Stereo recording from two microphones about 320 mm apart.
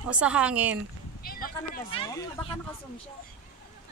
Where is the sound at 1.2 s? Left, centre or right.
Left.